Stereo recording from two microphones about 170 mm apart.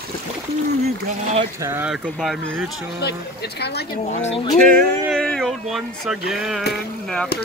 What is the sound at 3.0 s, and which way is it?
Speech, 75° left (ahead or behind).